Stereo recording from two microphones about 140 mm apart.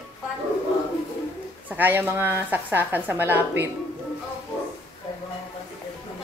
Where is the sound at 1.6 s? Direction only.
15° right (ahead or behind).